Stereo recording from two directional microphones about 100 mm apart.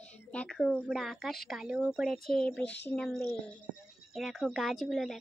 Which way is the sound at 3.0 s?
5° left (ahead or behind).